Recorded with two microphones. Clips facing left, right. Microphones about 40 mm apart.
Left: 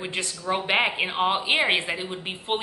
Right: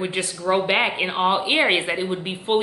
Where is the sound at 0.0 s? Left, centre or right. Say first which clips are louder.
Right 5 dB; centre.